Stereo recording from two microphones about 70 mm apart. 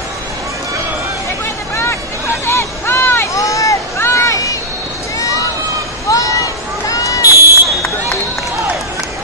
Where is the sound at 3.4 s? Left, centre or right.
Left.